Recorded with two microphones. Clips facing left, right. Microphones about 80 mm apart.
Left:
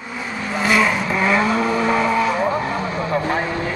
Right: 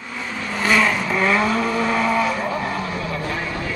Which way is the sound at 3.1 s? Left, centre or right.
Left.